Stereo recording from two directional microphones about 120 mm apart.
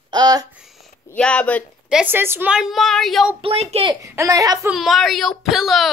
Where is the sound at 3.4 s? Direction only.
55° right (ahead or behind).